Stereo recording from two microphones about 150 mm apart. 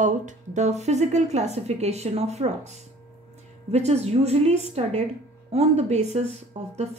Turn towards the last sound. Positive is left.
turn(degrees=-45)  # may be behind; listen again after turning